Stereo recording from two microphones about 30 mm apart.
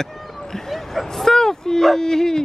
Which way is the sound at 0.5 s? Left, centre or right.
Centre.